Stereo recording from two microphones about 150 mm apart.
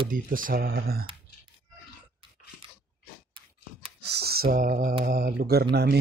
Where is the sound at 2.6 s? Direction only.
35° right (ahead or behind).